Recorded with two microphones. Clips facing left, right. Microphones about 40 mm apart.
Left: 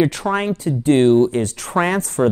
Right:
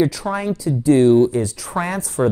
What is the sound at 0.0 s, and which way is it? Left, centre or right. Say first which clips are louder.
Speech: left 1 dB; left.